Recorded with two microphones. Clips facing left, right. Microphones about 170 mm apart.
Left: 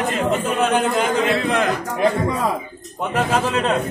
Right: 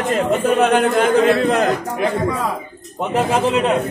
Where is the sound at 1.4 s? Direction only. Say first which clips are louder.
Right 3 dB; 40° right (ahead or behind).